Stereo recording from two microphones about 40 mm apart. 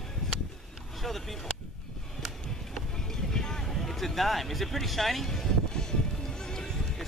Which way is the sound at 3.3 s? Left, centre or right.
Centre.